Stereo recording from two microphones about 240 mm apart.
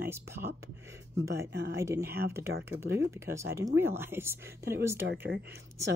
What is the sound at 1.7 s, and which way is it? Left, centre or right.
Speech, centre.